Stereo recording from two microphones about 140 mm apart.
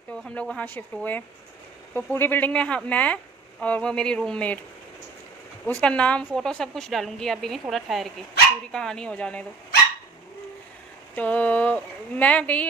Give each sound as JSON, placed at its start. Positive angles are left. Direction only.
{"t": 0.1, "sound": "speech", "side_deg": 5}
{"t": 5.8, "sound": "a woman's voice", "side_deg": 10}
{"t": 11.1, "sound": "speech", "side_deg": 10}